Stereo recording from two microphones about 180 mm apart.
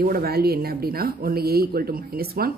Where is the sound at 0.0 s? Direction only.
55° right (ahead or behind).